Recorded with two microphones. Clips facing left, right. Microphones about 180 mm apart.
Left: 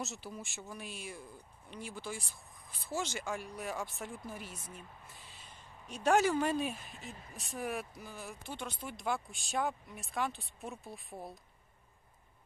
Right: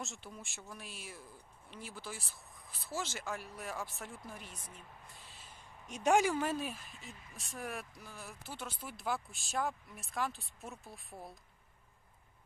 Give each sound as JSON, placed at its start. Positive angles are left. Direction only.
{"t": 0.0, "sound": "speech", "side_deg": 0}
{"t": 5.9, "sound": "speech", "side_deg": -15}
{"t": 6.4, "sound": "speech", "side_deg": 0}